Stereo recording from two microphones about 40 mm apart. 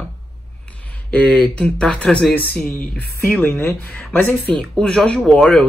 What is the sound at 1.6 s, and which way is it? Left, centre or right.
Speech, left.